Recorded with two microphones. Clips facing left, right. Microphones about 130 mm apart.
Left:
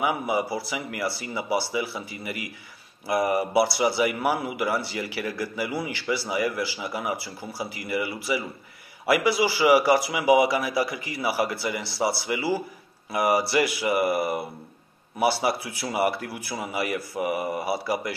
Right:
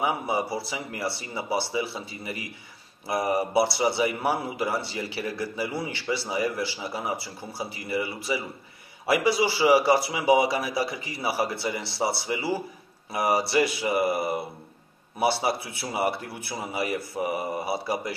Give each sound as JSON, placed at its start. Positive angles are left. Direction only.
{"t": 0.0, "sound": "a man's voice", "side_deg": -30}
{"t": 15.4, "sound": "a man's voice", "side_deg": -25}